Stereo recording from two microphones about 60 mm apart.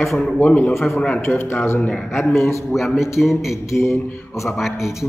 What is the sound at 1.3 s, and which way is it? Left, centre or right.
Speech, centre.